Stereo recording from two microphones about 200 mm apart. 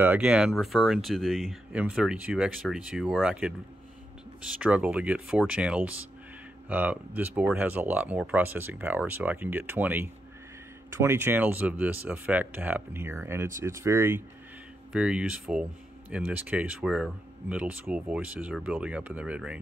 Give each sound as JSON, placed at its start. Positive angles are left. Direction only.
{"t": 0.0, "sound": "speech", "side_deg": -5}